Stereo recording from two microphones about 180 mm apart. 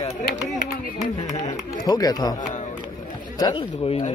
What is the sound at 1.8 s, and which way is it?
Speech, 20° left (ahead or behind).